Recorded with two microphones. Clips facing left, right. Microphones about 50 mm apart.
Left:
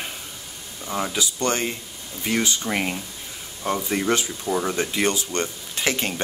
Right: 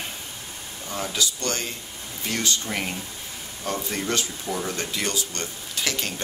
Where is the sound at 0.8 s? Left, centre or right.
Left.